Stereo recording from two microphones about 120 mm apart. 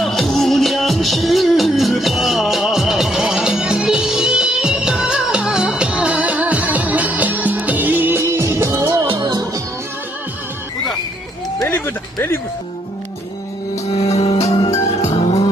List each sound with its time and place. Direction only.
0.0 s music: centre (ahead or behind); by 9.0 s 25° right (ahead or behind)
9.0 s music: 40° right (ahead or behind)
11.6 s a sound: 15° left (ahead or behind)
13.9 s music: 60° left (ahead or behind)